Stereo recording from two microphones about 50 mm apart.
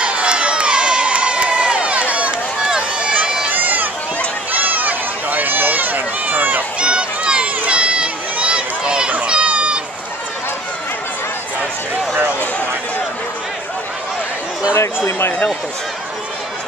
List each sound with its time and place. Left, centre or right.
0.0 s crowd: right
2.6 s run: centre
3.4 s run: right
6.8 s a sound: right
9.2 s run: right
14.7 s a sound: left